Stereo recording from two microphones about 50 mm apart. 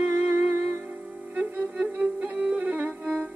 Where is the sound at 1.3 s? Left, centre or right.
Right.